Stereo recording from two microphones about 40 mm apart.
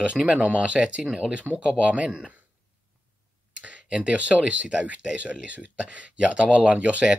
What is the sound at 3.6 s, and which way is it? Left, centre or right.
Speech, right.